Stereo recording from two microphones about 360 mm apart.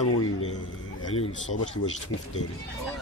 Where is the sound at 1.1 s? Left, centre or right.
Centre.